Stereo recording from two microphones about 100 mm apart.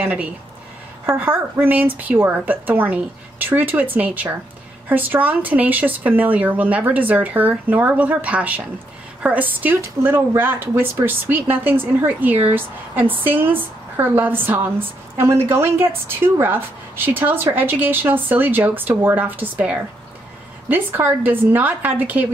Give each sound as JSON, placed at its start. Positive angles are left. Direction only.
{"t": 0.0, "sound": "a woman's voice", "side_deg": -15}